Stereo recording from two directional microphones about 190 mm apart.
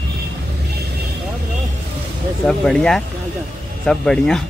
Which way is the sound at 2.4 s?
5° left (ahead or behind).